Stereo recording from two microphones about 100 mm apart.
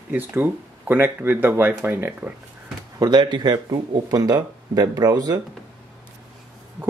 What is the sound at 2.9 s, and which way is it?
Speech, 45° right (ahead or behind).